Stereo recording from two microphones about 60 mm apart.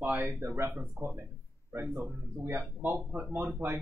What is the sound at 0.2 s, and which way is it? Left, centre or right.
Speech, right.